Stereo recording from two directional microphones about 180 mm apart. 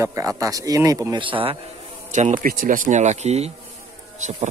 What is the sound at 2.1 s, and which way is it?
Speech, 40° right (ahead or behind).